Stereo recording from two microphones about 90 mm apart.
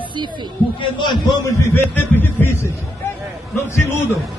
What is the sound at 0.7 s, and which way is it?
Speech, 60° left (ahead or behind).